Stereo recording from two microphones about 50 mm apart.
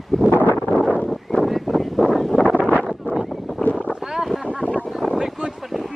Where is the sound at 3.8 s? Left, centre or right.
Centre.